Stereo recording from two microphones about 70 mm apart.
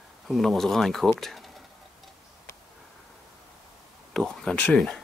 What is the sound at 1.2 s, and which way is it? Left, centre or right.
Speech, centre.